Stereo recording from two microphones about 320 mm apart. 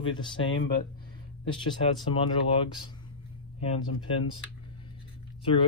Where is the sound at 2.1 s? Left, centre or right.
Centre.